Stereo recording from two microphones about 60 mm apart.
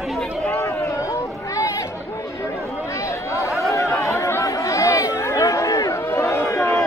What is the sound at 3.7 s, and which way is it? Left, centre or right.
Chatter, left.